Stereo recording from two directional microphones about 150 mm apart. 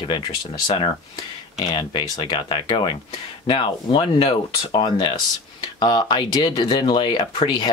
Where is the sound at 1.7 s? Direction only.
30° left (ahead or behind).